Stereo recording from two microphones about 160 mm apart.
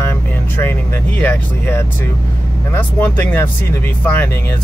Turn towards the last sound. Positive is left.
turn(degrees=15)  # may be behind; listen again after turning